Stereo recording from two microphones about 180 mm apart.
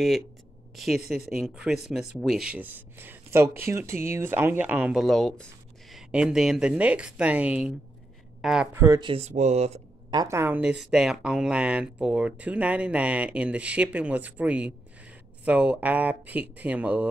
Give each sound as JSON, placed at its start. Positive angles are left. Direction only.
{"t": 0.7, "sound": "speech", "side_deg": 0}
{"t": 8.7, "sound": "speech", "side_deg": -15}
{"t": 9.0, "sound": "speech", "side_deg": -35}
{"t": 10.1, "sound": "speech", "side_deg": -15}